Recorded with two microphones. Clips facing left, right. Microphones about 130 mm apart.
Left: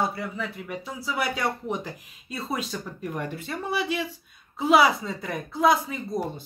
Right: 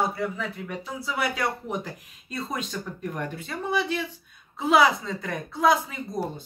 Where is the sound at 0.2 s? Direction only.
Centre (ahead or behind).